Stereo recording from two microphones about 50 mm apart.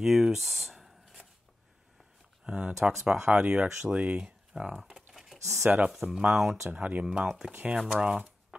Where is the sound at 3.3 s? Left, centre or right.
Centre.